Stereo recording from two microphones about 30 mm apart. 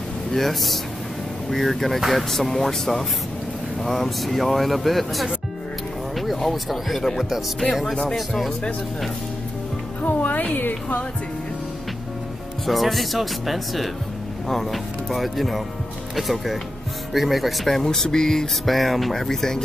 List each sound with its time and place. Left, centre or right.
0.3 s speech: centre
6.1 s a sound: centre
6.5 s speech: centre
7.9 s speech: centre
10.0 s a woman's voice: left
12.6 s speech: centre
17.8 s speech: centre
18.7 s speech: centre
19.2 s speech: centre